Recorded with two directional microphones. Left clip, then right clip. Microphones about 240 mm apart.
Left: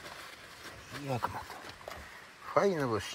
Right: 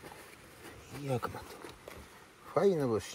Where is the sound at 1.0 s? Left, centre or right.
Centre.